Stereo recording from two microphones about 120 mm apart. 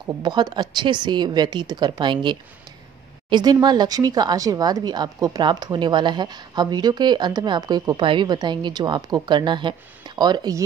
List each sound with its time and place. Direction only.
0.0 s a woman's voice: 40° right (ahead or behind)
8.0 s a woman's voice: 40° right (ahead or behind)